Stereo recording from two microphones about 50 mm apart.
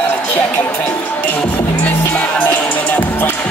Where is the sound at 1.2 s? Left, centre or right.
Left.